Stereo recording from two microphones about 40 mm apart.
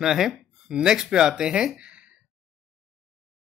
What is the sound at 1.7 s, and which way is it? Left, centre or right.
Sigh, right.